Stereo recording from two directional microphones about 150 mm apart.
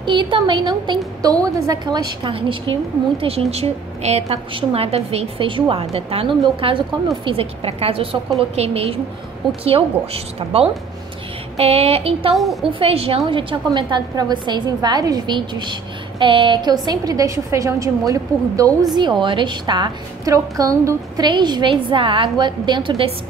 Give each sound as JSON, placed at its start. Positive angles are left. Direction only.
{"t": 0.0, "sound": "a woman's voice", "side_deg": -30}
{"t": 2.2, "sound": "a woman's voice", "side_deg": -35}